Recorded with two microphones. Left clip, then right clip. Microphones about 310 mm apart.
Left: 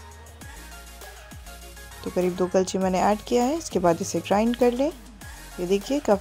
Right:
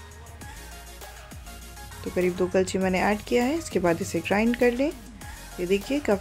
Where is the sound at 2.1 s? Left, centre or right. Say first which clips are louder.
Left 1 dB; centre.